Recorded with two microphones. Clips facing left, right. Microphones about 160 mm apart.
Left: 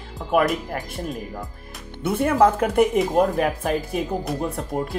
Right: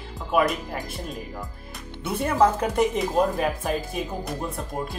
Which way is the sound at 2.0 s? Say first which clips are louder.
Left 3 dB; 50° left (ahead or behind).